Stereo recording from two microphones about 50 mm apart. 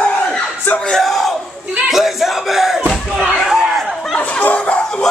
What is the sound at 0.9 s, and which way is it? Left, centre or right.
Yell, centre.